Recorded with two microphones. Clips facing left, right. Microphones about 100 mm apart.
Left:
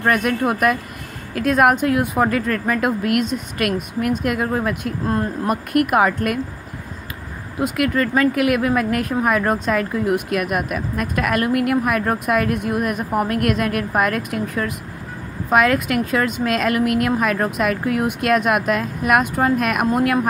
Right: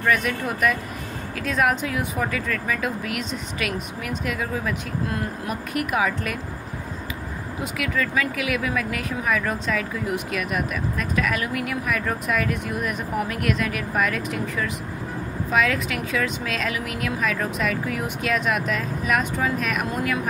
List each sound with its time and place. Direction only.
0.0 s speech: 50° left (ahead or behind)
5.0 s speech: 35° left (ahead or behind)
5.5 s speech: 55° left (ahead or behind)
7.6 s speech: 55° left (ahead or behind)